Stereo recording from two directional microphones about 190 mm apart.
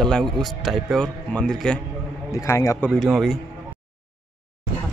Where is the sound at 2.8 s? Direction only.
5° right (ahead or behind).